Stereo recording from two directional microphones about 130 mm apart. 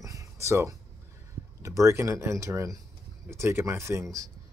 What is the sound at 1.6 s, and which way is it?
Speech, 25° right (ahead or behind).